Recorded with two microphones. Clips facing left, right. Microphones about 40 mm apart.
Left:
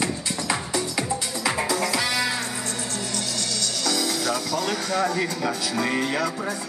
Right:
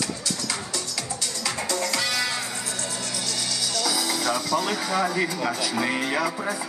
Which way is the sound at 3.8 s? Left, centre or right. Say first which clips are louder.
Left 1 dB; centre.